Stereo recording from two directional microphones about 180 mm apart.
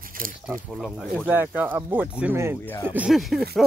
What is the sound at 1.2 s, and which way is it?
Speech, 10° right (ahead or behind).